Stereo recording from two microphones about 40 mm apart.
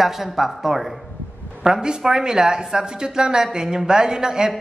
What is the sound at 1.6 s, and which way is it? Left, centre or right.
A woman's voice, centre.